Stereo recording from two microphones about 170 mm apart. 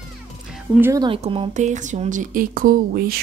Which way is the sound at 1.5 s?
45° right (ahead or behind).